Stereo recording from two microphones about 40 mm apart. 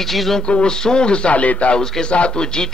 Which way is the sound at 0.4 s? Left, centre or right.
Left.